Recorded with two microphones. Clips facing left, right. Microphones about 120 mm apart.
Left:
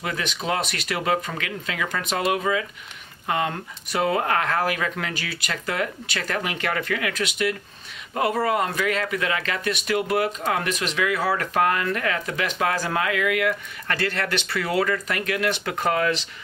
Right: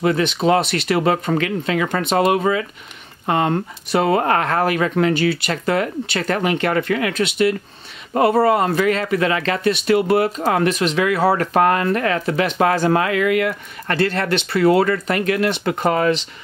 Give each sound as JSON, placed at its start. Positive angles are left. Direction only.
{"t": 0.0, "sound": "speech", "side_deg": -30}